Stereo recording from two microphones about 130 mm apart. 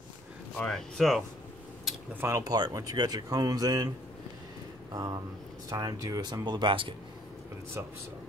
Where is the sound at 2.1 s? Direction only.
15° right (ahead or behind).